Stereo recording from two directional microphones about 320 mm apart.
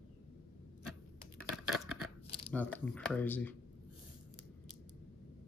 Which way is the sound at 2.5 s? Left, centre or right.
Centre.